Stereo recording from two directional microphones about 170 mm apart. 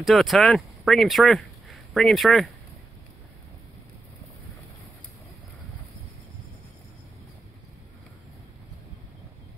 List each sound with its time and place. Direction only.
0.0 s speech: centre (ahead or behind)